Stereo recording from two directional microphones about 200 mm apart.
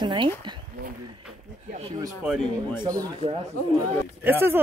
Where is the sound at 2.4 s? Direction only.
5° left (ahead or behind).